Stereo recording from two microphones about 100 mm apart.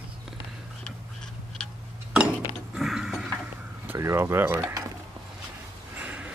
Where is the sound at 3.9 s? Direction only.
25° right (ahead or behind).